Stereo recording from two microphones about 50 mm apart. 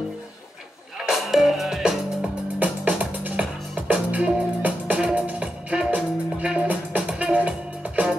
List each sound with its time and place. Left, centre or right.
0.9 s music: centre
1.8 s music: centre
2.6 s music: right
3.3 s music: right